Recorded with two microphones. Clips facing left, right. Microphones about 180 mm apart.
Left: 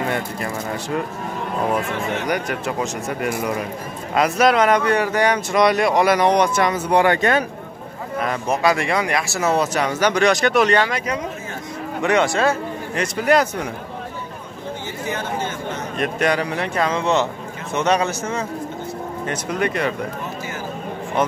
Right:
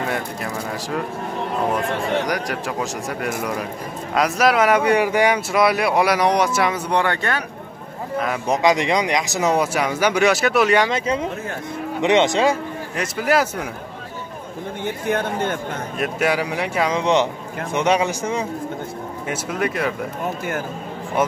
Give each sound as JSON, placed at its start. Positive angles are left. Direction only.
{"t": 0.1, "sound": "speech", "side_deg": 0}
{"t": 2.5, "sound": "speech", "side_deg": 0}
{"t": 6.9, "sound": "speech", "side_deg": 10}
{"t": 8.5, "sound": "speech", "side_deg": -20}
{"t": 10.8, "sound": "speech", "side_deg": -25}
{"t": 12.9, "sound": "speech", "side_deg": 0}
{"t": 15.0, "sound": "speech", "side_deg": -55}
{"t": 16.0, "sound": "speech", "side_deg": -5}